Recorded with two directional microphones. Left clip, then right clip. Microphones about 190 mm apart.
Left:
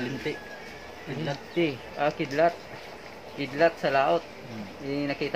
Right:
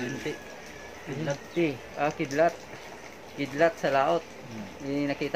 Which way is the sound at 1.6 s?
25° right (ahead or behind).